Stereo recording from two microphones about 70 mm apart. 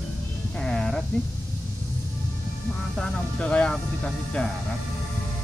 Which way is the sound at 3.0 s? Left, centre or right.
Centre.